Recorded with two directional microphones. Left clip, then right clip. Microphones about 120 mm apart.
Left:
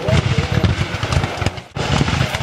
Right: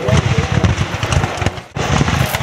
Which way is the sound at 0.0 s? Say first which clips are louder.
Right 2 dB; centre (ahead or behind).